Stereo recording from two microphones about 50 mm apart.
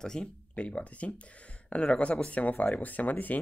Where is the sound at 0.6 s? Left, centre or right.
Left.